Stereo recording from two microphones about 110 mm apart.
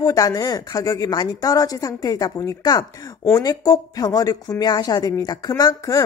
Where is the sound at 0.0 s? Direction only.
35° left (ahead or behind).